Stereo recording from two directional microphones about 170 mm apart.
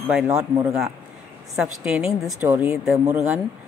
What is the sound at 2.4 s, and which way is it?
Speech, 15° right (ahead or behind).